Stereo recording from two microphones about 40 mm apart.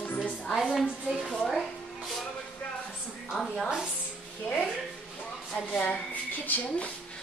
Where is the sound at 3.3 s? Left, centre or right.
Centre.